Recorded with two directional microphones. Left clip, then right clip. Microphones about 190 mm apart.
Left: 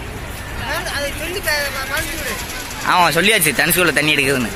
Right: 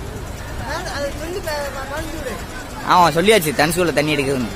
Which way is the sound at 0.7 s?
25° right (ahead or behind).